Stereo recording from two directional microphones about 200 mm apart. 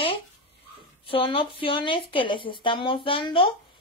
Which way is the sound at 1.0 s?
25° left (ahead or behind).